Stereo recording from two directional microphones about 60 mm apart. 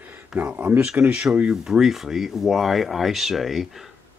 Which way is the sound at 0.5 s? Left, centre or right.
Right.